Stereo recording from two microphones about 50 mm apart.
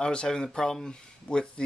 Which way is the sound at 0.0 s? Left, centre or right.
Centre.